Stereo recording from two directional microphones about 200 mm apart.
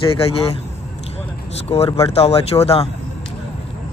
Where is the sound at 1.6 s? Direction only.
30° left (ahead or behind).